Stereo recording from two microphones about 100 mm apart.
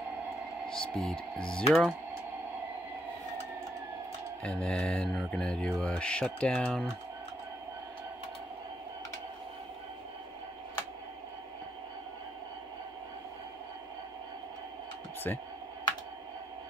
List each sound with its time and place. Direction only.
0.7 s speech: 10° left (ahead or behind)
4.4 s speech: 10° left (ahead or behind)
15.3 s speech: 20° left (ahead or behind)